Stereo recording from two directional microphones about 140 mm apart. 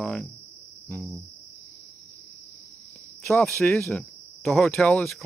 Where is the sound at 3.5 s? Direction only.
Centre (ahead or behind).